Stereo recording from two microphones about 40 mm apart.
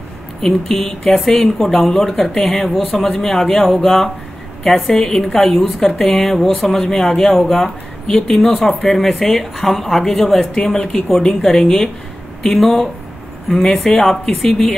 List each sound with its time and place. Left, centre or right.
0.4 s a woman's voice: centre
8.4 s a woman's voice: centre
13.5 s speech: centre
14.0 s speech: centre